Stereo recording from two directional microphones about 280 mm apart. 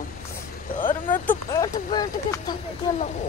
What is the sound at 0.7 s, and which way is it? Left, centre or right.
Vehicle, left.